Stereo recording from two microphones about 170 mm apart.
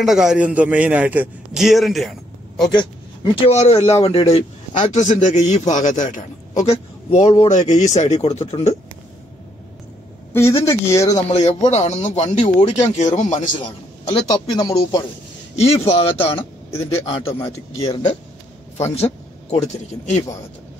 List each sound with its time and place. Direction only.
0.0 s a man's voice: centre (ahead or behind)
3.3 s a man's voice: 40° left (ahead or behind)
10.3 s speech: 15° left (ahead or behind)
11.1 s a man's voice: 40° left (ahead or behind)
14.5 s speech: 25° left (ahead or behind)
15.5 s speech: 35° left (ahead or behind)
16.3 s speech: 15° left (ahead or behind)
16.9 s speech: 35° left (ahead or behind)